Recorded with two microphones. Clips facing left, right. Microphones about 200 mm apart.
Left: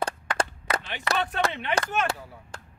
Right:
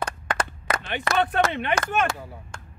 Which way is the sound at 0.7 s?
50° right (ahead or behind).